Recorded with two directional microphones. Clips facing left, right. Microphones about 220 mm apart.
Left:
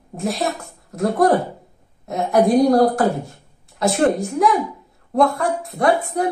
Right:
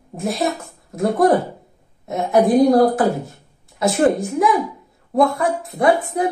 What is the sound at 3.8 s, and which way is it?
A woman's voice, centre (ahead or behind).